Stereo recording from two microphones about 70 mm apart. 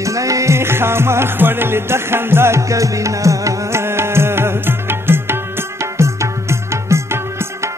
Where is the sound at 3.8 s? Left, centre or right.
Right.